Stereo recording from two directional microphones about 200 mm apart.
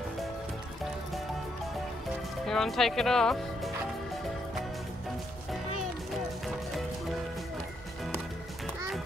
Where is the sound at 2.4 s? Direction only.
Centre (ahead or behind).